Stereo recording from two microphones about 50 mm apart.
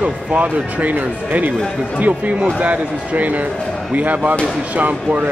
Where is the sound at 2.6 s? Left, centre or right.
Right.